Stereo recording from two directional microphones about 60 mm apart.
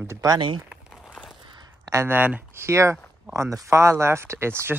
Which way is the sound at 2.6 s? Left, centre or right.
Right.